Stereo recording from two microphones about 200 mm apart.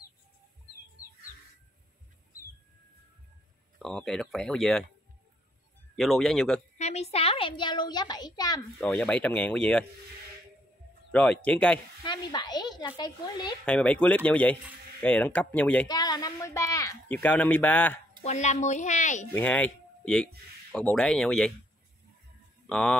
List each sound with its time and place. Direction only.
3.8 s speech: centre (ahead or behind)
5.9 s speech: centre (ahead or behind)
6.8 s a child's voice: 30° left (ahead or behind)
8.8 s speech: 5° left (ahead or behind)
11.1 s speech: 5° left (ahead or behind)
12.0 s speech: 20° left (ahead or behind)
13.7 s speech: 5° left (ahead or behind)
15.9 s speech: 20° left (ahead or behind)
18.2 s a woman's voice: 35° left (ahead or behind)
19.3 s speech: 10° left (ahead or behind)
22.7 s speech: 5° left (ahead or behind)